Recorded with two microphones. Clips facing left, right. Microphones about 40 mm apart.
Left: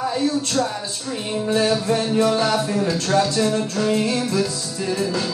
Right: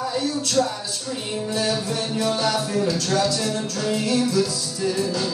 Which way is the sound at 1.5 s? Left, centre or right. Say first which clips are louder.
Left 6 dB; left.